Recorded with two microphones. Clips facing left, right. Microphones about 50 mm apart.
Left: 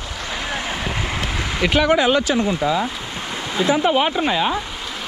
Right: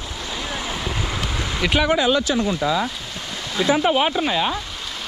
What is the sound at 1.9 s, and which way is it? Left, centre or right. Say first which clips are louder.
Speech: left 2 dB; left.